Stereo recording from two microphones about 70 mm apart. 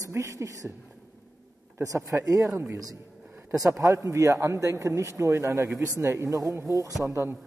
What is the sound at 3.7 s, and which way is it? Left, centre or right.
A man's voice, right.